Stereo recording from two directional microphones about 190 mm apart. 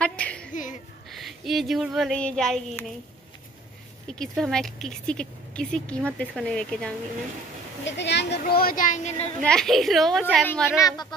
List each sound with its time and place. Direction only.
0.0 s a sound: 5° left (ahead or behind)
0.5 s a sound: 45° left (ahead or behind)
1.1 s speech: centre (ahead or behind)
4.1 s speech: 5° left (ahead or behind)
7.8 s speech: 65° left (ahead or behind); by 9.1 s 45° left (ahead or behind)
9.2 s speech: 5° left (ahead or behind)